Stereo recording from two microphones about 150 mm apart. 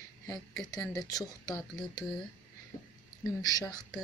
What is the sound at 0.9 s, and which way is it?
Speech, 25° left (ahead or behind).